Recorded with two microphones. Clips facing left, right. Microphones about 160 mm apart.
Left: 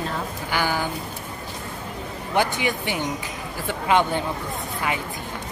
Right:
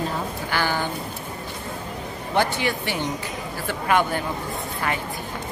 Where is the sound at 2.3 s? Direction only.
15° left (ahead or behind).